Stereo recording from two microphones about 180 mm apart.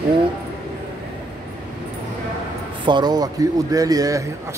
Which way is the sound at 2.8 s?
25° right (ahead or behind).